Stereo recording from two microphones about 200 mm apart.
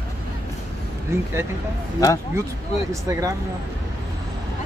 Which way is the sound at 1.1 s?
15° right (ahead or behind).